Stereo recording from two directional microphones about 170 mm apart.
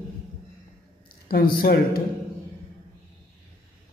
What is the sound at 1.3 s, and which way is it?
Speech, 65° left (ahead or behind).